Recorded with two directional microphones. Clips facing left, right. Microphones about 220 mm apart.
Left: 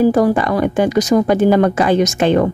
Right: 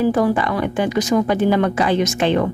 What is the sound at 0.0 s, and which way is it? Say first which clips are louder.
Speech: left 4 dB; 40° left (ahead or behind).